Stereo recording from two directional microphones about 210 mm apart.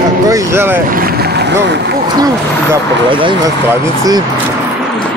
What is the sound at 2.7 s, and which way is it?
Speech, 25° right (ahead or behind).